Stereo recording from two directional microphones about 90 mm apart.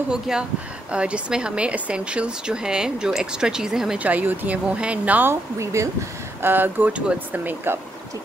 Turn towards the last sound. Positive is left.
turn(degrees=-25)  # may be behind; listen again after turning